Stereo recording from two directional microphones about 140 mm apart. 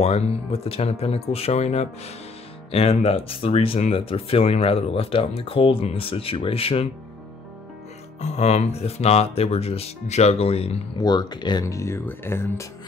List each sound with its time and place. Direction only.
0.0 s speech: 45° left (ahead or behind)
8.2 s speech: 50° left (ahead or behind)
11.0 s speech: 30° left (ahead or behind)
11.6 s speech: 20° left (ahead or behind)